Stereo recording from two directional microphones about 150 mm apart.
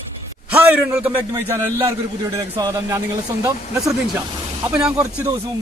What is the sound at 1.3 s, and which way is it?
Speech, 20° right (ahead or behind).